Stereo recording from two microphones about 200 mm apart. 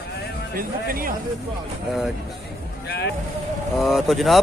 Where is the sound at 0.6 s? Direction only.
45° right (ahead or behind).